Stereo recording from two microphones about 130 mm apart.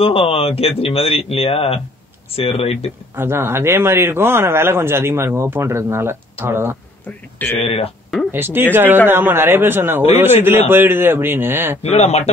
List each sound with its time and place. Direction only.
0.0 s speech: 45° left (ahead or behind)
3.2 s speech: 20° right (ahead or behind)
7.5 s speech: 50° left (ahead or behind)
8.3 s speech: 15° right (ahead or behind)
11.8 s speech: 55° left (ahead or behind)